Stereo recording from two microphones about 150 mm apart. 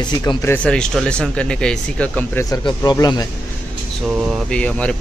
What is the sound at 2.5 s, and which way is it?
Speech, 25° left (ahead or behind).